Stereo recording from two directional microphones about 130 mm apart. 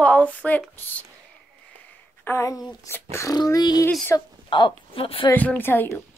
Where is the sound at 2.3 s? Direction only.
25° left (ahead or behind); by 5.2 s 45° left (ahead or behind).